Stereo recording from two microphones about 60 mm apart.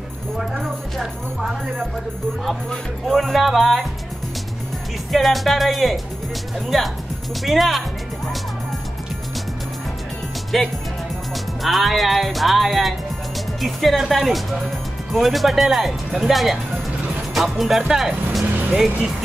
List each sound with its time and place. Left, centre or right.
0.4 s speech: centre
3.1 s speech: centre
5.1 s speech: centre
10.5 s speech: centre
18.4 s music: right